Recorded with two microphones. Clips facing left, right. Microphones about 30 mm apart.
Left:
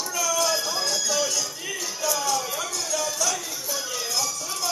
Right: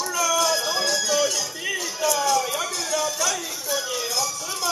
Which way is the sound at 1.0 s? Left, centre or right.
Centre.